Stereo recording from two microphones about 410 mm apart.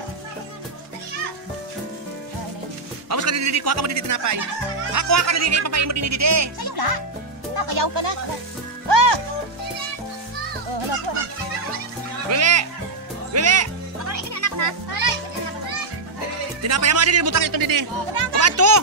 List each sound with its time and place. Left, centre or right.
3.1 s speech: right
6.6 s speech: right
8.8 s music: right
12.3 s music: right
16.6 s speech: right
17.4 s speech: right
18.4 s a child's voice: right